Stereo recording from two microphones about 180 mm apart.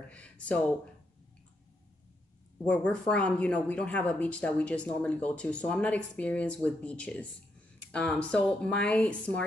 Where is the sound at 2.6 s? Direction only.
5° left (ahead or behind).